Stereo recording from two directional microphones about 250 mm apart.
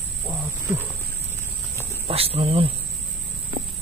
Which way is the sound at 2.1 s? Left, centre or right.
Right.